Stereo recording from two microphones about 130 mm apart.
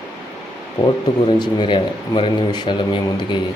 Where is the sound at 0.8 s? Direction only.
35° left (ahead or behind).